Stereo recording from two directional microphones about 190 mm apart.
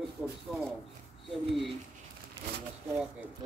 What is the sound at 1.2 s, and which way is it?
Speech, centre (ahead or behind).